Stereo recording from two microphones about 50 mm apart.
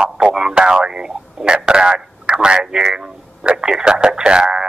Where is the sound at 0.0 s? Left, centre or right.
Centre.